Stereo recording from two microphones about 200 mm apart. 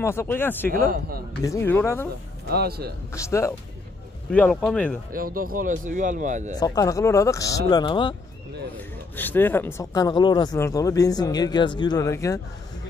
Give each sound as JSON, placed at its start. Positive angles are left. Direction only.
{"t": 0.0, "sound": "speech", "side_deg": 15}
{"t": 2.5, "sound": "speech", "side_deg": -50}
{"t": 3.1, "sound": "speech", "side_deg": 15}
{"t": 5.1, "sound": "speech", "side_deg": -45}
{"t": 6.5, "sound": "speech", "side_deg": 20}
{"t": 9.1, "sound": "speech", "side_deg": 10}